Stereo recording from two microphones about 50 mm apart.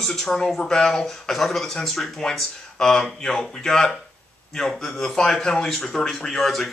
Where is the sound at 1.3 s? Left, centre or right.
Centre.